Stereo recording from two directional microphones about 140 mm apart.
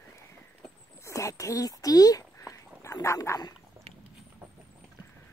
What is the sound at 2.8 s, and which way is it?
Dog, 20° left (ahead or behind).